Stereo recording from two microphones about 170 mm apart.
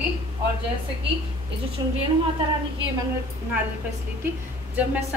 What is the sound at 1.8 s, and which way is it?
Speech, 25° right (ahead or behind).